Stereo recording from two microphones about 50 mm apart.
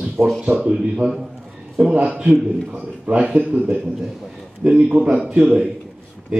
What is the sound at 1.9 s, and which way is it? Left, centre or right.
A man's voice, right.